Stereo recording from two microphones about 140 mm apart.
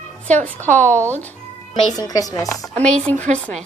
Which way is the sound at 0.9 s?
20° right (ahead or behind).